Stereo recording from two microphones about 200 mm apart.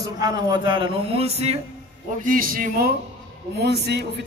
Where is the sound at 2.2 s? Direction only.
45° right (ahead or behind).